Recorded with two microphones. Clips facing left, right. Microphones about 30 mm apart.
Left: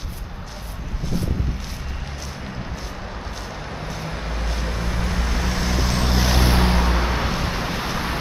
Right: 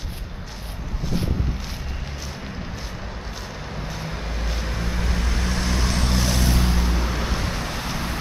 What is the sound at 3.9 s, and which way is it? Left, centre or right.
Vehicle, centre.